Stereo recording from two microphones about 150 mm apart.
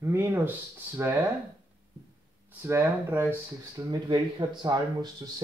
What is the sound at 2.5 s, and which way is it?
Speech, 15° right (ahead or behind).